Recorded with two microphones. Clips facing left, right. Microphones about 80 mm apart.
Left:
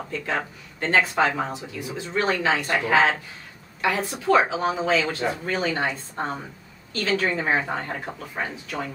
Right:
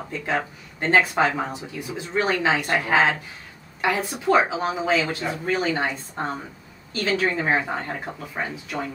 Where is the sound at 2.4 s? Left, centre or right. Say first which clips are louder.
Right 1 dB; centre.